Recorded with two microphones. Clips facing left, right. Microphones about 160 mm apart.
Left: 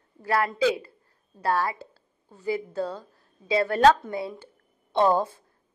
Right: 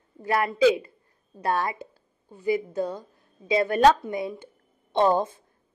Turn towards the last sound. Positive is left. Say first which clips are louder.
# even
turn(degrees=-20)  # may be behind; listen again after turning